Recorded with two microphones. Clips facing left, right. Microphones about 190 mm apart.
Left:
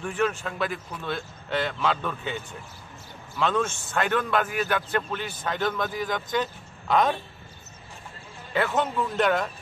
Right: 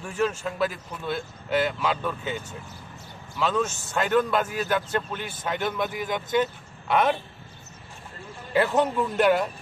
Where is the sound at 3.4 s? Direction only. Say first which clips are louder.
Even; 5° right (ahead or behind).